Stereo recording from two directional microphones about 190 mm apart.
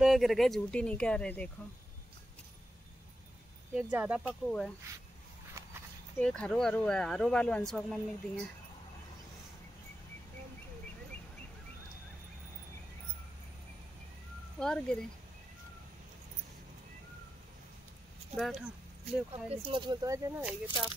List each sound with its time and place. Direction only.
0.0 s speech: centre (ahead or behind)
3.7 s speech: 5° right (ahead or behind)
4.5 s speech: 5° left (ahead or behind)
6.1 s speech: 5° left (ahead or behind)
14.6 s speech: 5° left (ahead or behind)
18.3 s speech: centre (ahead or behind)
19.3 s speech: 30° right (ahead or behind)